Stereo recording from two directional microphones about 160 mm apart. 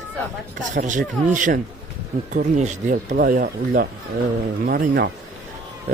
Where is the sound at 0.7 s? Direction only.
50° right (ahead or behind).